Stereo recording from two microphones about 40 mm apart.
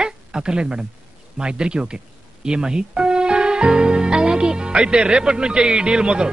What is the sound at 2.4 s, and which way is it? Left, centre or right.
Music, centre.